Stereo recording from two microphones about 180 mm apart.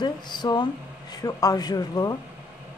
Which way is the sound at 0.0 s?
25° left (ahead or behind).